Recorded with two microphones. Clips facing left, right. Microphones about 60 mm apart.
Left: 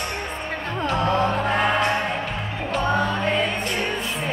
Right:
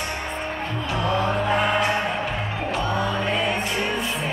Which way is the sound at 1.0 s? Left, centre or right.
Left.